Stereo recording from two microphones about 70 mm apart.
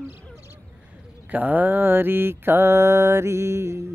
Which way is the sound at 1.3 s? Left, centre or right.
Right.